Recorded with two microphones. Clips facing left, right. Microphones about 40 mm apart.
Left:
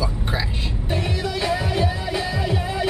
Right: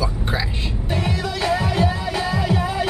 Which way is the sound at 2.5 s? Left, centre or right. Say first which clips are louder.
Right 3 dB; right.